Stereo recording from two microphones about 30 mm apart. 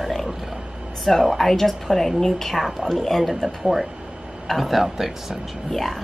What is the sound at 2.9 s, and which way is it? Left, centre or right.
Speech, centre.